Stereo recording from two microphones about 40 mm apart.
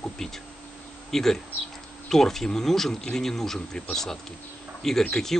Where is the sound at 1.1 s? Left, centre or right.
Centre.